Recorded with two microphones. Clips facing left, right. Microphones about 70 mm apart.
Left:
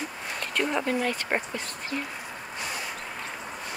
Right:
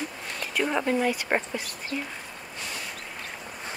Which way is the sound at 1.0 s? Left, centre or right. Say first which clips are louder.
Right 2 dB; centre.